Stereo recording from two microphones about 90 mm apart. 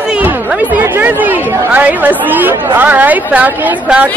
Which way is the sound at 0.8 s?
20° right (ahead or behind).